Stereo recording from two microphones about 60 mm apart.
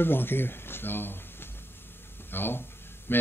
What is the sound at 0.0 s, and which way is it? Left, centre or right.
Speech, left.